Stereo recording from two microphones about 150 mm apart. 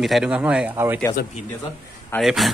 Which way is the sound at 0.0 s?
5° right (ahead or behind).